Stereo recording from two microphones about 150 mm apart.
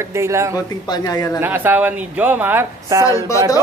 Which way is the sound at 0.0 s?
20° right (ahead or behind).